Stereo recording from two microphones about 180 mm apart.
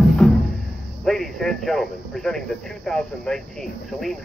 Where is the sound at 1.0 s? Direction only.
Centre (ahead or behind).